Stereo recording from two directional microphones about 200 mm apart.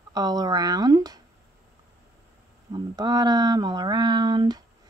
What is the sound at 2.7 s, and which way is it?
Speech, 20° right (ahead or behind).